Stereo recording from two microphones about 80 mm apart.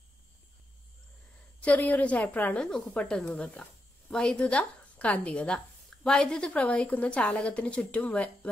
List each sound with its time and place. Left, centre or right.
1.6 s a woman's voice: centre